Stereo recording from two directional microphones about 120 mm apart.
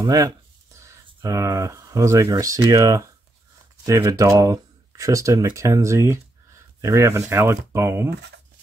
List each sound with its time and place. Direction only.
0.0 s speech: 35° right (ahead or behind)